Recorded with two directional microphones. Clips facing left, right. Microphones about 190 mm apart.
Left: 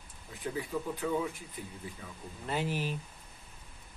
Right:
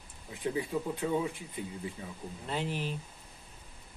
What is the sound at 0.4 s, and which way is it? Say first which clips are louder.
Speech: right 3 dB; 25° right (ahead or behind).